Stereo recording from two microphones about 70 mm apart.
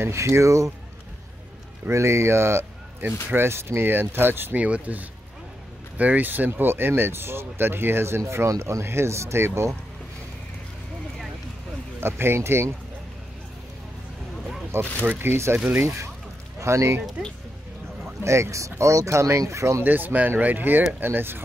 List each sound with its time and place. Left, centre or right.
0.0 s speech: right
1.9 s speech: right
4.6 s speech: centre; by 9.7 s right
12.0 s speech: right
14.7 s speech: right
18.2 s speech: right
19.8 s speech: right